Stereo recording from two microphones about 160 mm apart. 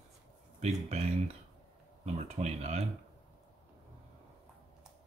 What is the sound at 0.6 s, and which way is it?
Speech, 45° right (ahead or behind).